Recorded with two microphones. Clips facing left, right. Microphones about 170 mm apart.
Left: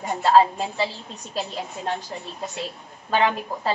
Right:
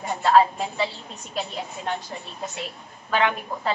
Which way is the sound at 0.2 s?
30° left (ahead or behind).